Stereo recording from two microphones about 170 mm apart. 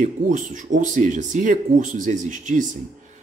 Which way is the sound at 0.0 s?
50° right (ahead or behind).